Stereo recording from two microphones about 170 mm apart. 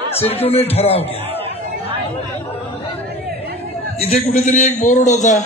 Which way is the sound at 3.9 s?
35° left (ahead or behind).